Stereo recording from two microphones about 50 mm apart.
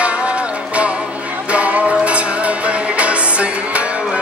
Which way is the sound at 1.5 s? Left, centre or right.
Right.